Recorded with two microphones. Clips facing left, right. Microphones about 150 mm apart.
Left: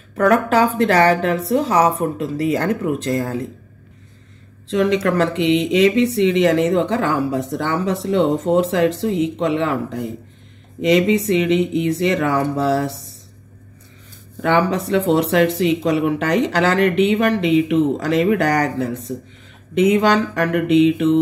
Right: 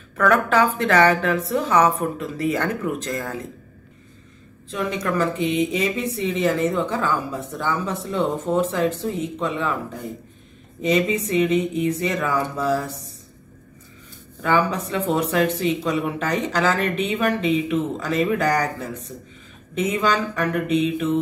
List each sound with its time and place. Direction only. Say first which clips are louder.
0.1 s a woman's voice: left 3 dB; 30° left (ahead or behind)
4.6 s speech: left 8 dB; 85° left
10.8 s speech: left 5 dB; 90° left
14.4 s speech: left 4 dB; 85° left
15.6 s speech: left 5 dB; 80° left